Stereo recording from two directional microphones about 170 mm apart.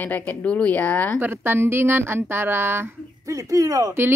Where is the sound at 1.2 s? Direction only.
10° right (ahead or behind).